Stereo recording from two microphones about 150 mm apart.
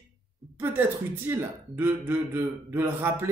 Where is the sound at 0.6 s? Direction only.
15° right (ahead or behind).